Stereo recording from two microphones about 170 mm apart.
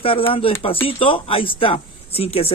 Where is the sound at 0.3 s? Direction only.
35° left (ahead or behind).